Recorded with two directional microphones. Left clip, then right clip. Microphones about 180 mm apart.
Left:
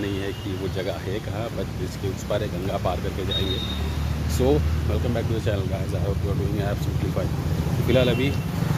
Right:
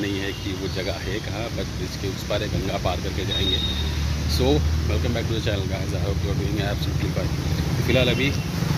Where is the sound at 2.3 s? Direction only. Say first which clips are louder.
Even; 5° left (ahead or behind).